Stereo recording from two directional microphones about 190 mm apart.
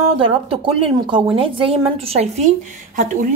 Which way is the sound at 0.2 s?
30° right (ahead or behind).